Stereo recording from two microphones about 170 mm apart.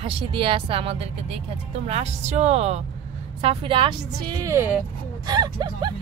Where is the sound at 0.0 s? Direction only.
30° right (ahead or behind).